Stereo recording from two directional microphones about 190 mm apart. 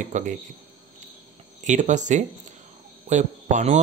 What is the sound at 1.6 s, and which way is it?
Speech, 40° right (ahead or behind).